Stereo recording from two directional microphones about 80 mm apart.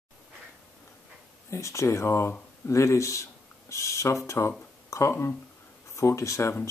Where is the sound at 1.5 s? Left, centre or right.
Left.